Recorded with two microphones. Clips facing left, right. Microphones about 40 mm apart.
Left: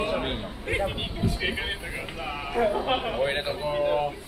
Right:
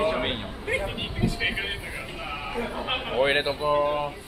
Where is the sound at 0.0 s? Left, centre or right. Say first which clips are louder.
Right 2 dB; right.